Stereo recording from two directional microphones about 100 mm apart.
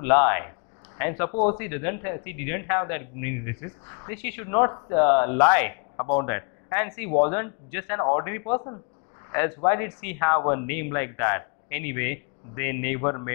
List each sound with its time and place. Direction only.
0.0 s speech: 20° left (ahead or behind)